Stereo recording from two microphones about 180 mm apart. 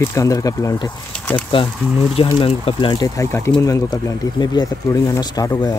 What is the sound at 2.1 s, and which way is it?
Speech, 35° left (ahead or behind).